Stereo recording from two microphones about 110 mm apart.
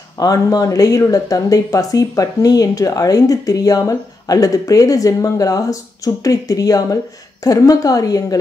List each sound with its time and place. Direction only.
0.2 s speech: 35° left (ahead or behind)